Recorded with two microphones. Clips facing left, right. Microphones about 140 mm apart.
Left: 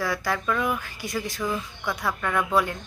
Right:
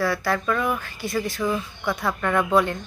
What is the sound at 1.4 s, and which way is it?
Speech, 10° right (ahead or behind).